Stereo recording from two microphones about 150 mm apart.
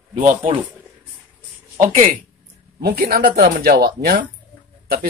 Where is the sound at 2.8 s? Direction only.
90° right.